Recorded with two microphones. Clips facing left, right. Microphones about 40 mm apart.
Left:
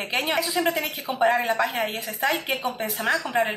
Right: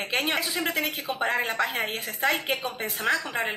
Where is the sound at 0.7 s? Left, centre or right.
Right.